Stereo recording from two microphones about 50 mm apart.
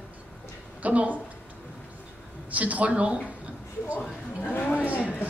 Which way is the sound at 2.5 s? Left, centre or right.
Right.